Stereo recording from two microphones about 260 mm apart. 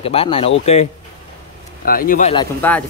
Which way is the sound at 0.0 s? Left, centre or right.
Left.